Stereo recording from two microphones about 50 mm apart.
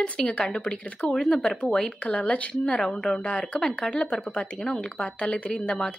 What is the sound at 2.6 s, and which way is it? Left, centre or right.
Speech, centre.